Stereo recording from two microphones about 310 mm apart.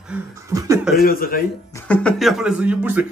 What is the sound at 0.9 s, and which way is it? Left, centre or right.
Speech, left.